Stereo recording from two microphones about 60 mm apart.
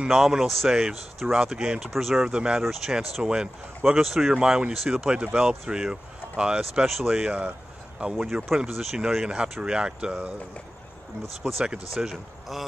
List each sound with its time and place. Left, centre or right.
0.1 s speech: centre
2.3 s speech: centre
2.6 s speech: centre
6.6 s speech: centre
7.2 s speech: centre
11.9 s speech: centre